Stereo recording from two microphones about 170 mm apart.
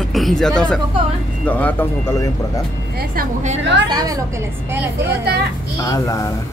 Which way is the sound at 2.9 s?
55° right (ahead or behind).